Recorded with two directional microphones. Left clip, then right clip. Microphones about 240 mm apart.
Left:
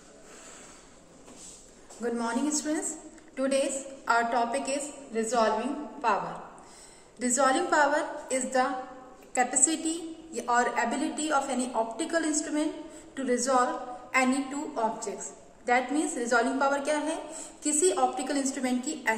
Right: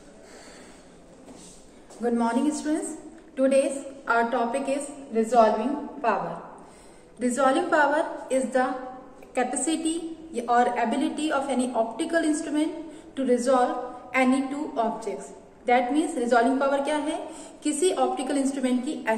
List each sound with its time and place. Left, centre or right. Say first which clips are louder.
2.0 s a woman's voice: right 5 dB; centre
7.2 s a woman's voice: right 3 dB; centre